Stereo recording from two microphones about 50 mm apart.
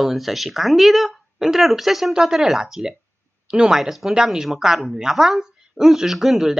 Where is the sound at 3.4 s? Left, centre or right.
Centre.